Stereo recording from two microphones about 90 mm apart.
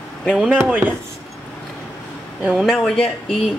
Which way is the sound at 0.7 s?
20° right (ahead or behind).